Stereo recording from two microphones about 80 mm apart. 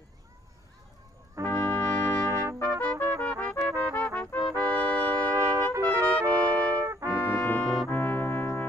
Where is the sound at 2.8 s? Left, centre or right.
Centre.